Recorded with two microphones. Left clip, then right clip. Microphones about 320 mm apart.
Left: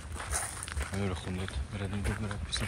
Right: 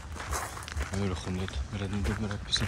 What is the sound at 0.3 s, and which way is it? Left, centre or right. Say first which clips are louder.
Dog: right 3 dB; right.